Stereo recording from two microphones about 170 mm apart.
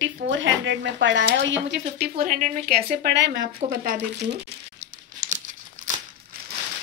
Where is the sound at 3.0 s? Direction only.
90° right.